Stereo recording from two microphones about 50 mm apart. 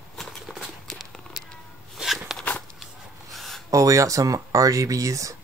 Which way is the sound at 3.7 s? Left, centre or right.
Right.